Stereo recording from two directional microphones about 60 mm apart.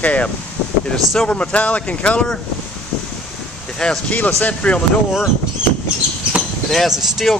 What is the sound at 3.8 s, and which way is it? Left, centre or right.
Speech, centre.